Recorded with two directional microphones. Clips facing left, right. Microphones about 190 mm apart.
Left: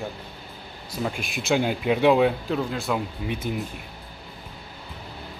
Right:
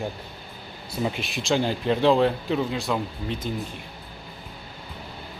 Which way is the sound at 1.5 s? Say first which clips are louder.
Left 1 dB; 10° left (ahead or behind).